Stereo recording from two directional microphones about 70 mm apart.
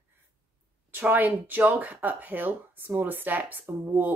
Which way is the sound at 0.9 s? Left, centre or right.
Right.